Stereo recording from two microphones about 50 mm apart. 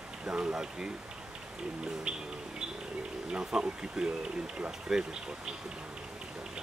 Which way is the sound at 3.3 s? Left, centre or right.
Centre.